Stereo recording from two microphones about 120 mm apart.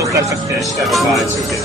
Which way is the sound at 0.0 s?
25° right (ahead or behind).